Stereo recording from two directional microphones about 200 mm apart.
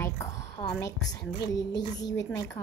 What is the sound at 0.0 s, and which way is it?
A woman's voice, 15° left (ahead or behind).